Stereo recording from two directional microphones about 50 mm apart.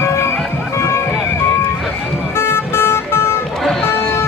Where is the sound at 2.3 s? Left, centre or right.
Left.